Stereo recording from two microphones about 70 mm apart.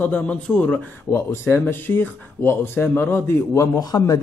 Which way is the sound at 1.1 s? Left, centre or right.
Left.